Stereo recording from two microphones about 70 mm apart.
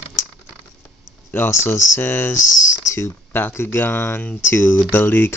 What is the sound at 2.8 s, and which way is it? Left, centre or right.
Speech, left.